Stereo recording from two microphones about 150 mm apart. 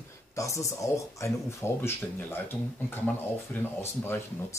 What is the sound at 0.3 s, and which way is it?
Speech, 20° left (ahead or behind).